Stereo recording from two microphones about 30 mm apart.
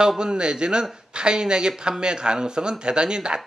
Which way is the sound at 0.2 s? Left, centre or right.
Right.